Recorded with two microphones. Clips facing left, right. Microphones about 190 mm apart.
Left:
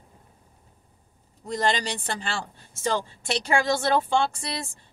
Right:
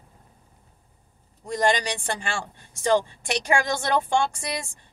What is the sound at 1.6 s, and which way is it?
Speech, 15° right (ahead or behind).